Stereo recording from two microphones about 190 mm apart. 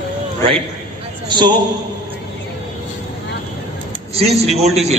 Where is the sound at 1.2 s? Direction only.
25° right (ahead or behind).